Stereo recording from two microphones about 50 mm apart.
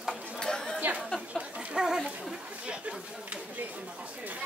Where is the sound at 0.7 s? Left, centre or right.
Right.